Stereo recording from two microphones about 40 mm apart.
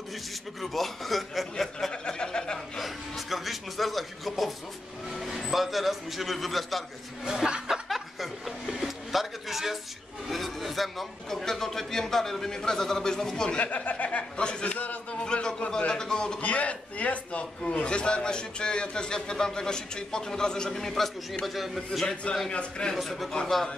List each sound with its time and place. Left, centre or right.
0.6 s a man's voice: centre
1.9 s chuckle: left
2.8 s a sound: centre
5.1 s vehicle: centre
7.2 s speech: centre
7.7 s chuckle: centre
8.6 s a sound: centre
10.2 s a man's voice: centre
13.7 s a man's voice: left
15.9 s a sound: centre
16.3 s a man's voice: left; by 22.1 s centre
22.5 s a man's voice: left
23.0 s a man's voice: centre